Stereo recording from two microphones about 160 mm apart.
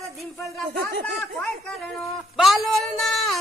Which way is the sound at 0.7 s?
80° right.